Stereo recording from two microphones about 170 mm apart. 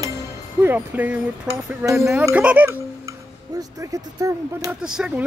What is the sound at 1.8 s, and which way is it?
A child's voice, 15° right (ahead or behind).